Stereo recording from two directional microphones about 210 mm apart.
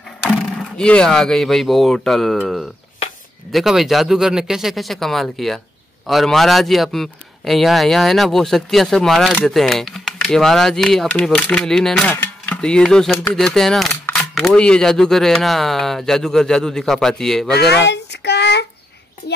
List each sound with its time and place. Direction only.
0.7 s a man's voice: 5° left (ahead or behind)
17.5 s speech: 50° left (ahead or behind)